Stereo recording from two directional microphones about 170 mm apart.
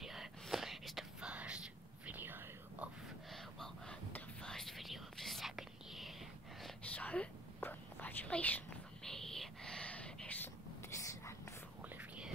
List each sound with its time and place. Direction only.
0.0 s whispering: centre (ahead or behind)
3.3 s whispering: centre (ahead or behind); by 11.3 s 20° left (ahead or behind)
11.8 s whispering: 10° right (ahead or behind)